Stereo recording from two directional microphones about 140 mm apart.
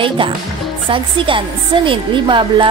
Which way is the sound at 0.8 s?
40° right (ahead or behind).